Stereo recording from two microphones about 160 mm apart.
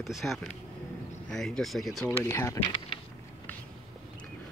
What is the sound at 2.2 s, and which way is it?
Speech, 20° left (ahead or behind).